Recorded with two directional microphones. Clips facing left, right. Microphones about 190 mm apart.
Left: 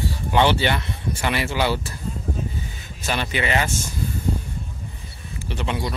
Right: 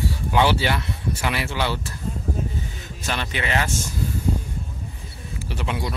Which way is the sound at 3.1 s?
5° left (ahead or behind).